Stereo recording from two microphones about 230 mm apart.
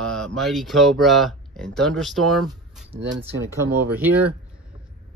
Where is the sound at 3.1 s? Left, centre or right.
Right.